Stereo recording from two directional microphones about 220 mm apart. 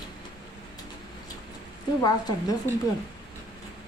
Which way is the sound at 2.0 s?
15° left (ahead or behind).